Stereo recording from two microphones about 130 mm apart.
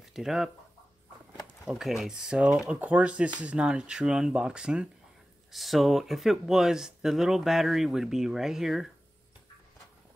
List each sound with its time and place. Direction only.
0.1 s speech: 5° right (ahead or behind)
1.7 s speech: centre (ahead or behind)